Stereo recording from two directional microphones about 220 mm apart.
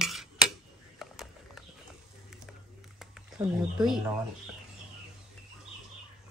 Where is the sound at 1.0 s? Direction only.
Centre (ahead or behind).